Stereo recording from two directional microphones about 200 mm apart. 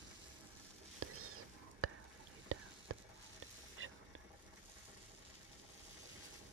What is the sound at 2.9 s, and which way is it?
Frying, 90° right.